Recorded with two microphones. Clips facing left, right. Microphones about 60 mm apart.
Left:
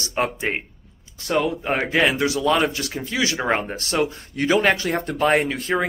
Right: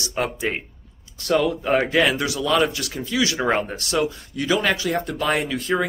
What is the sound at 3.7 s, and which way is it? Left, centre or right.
Speech, left.